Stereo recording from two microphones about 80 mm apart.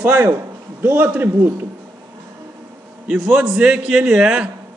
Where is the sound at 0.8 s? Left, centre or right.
Right.